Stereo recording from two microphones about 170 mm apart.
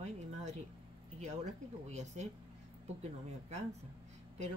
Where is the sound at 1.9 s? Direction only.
45° right (ahead or behind).